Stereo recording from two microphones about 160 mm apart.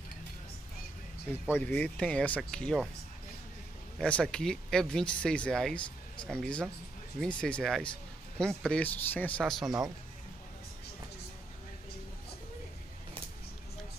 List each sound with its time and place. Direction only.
1.5 s speech: 10° left (ahead or behind)
4.0 s speech: 5° left (ahead or behind)